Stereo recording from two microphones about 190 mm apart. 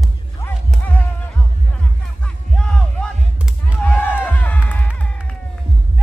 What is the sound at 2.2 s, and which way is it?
Music, 5° left (ahead or behind).